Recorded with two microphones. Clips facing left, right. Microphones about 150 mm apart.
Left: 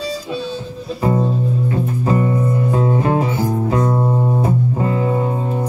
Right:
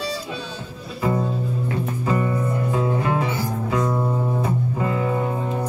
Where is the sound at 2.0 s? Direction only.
30° left (ahead or behind).